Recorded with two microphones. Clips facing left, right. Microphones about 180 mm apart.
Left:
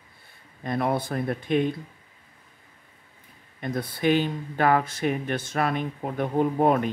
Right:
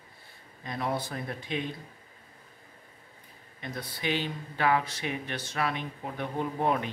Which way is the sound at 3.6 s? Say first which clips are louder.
Left 9 dB; 50° left (ahead or behind).